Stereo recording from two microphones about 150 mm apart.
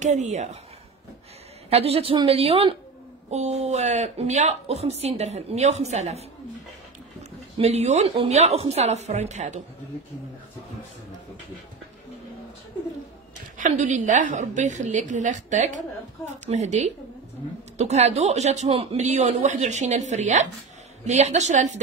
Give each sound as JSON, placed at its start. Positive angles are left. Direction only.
{"t": 0.0, "sound": "a woman's voice", "side_deg": -50}
{"t": 1.7, "sound": "a woman's voice", "side_deg": -40}
{"t": 7.5, "sound": "a woman's voice", "side_deg": -45}
{"t": 13.6, "sound": "a woman's voice", "side_deg": -55}